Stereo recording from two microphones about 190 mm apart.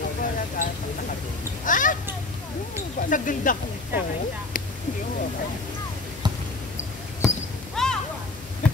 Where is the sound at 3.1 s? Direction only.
45° left (ahead or behind).